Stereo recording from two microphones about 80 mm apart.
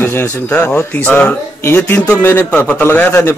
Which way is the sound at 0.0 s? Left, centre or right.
Left.